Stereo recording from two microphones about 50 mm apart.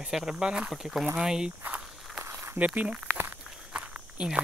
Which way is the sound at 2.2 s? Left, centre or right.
Right.